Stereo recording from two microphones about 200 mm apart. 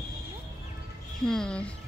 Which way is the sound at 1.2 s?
5° left (ahead or behind).